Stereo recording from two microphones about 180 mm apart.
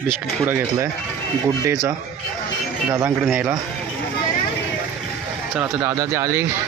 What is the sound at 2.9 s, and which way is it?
Speech, 15° right (ahead or behind).